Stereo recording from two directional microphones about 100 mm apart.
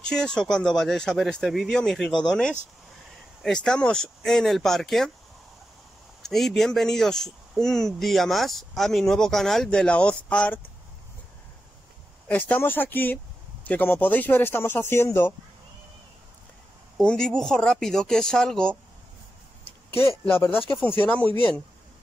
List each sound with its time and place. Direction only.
0.0 s speech: 5° left (ahead or behind)
6.2 s speech: 5° left (ahead or behind)
12.3 s speech: 15° left (ahead or behind)
17.0 s speech: 10° left (ahead or behind)
20.2 s speech: 20° left (ahead or behind)